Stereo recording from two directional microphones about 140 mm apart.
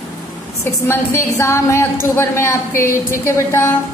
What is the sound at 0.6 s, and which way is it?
A woman's voice, 20° left (ahead or behind).